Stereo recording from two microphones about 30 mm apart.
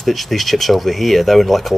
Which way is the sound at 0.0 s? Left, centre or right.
Centre.